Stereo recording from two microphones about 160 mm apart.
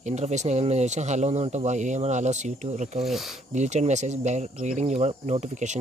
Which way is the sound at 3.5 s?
45° right (ahead or behind).